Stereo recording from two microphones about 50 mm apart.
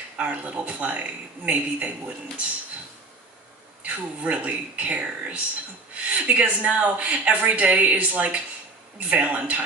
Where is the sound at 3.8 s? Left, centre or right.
Right.